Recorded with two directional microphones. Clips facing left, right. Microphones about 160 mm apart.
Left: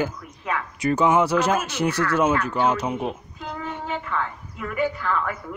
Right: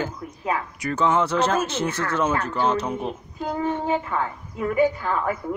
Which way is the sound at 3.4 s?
35° right (ahead or behind).